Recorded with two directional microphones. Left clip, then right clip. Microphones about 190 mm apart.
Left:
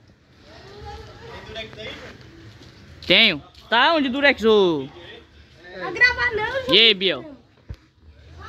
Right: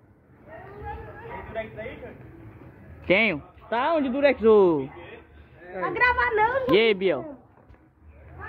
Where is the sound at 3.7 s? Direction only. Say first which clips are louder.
Left 6 dB; 30° left (ahead or behind); by 4.8 s 10° left (ahead or behind).